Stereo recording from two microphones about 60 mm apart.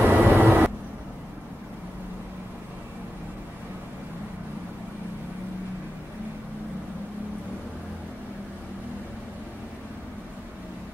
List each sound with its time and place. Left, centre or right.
0.0 s vehicle: right